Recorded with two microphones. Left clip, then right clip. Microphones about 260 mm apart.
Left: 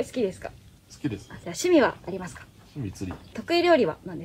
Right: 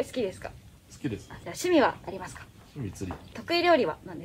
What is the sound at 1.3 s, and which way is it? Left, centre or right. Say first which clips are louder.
A woman's voice: left 4 dB; right.